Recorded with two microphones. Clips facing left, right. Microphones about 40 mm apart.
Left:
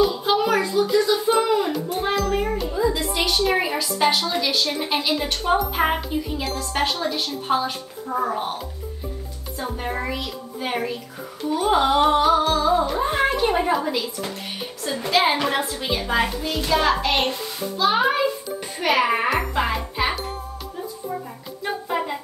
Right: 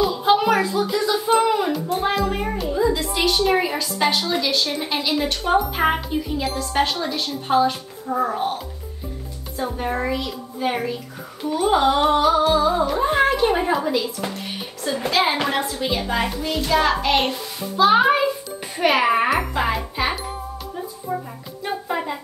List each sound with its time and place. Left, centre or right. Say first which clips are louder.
0.2 s a sound: right 3 dB; centre
1.7 s speech: right 2 dB; centre
2.3 s a sound: even; centre
4.2 s speech: right 1 dB; centre
17.7 s a child's voice: right 4 dB; centre
21.1 s music: right 5 dB; centre
21.6 s music: even; centre